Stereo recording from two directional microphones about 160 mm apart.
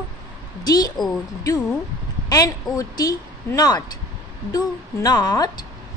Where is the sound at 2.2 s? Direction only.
20° left (ahead or behind).